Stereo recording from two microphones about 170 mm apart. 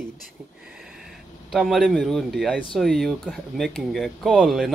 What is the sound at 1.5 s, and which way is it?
Speech, centre (ahead or behind).